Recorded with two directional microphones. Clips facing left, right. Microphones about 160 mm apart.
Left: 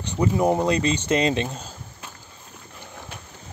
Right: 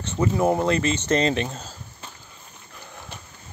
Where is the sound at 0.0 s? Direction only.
15° left (ahead or behind).